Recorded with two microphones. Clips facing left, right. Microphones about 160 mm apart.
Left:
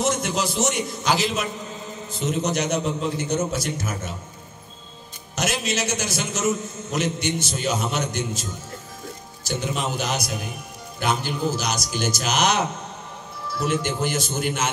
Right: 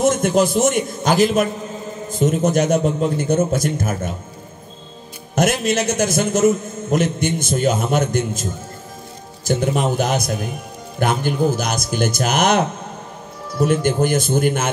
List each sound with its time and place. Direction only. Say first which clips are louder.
0.0 s a man's voice: right 8 dB; 50° right (ahead or behind)
5.3 s a man's voice: right 8 dB; 50° right (ahead or behind)
9.5 s a man's voice: right 8 dB; 55° right (ahead or behind)